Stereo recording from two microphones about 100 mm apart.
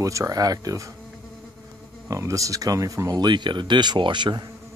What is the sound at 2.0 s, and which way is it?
Speech, 35° right (ahead or behind).